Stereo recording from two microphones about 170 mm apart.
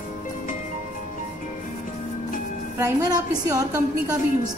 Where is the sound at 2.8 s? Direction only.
20° right (ahead or behind).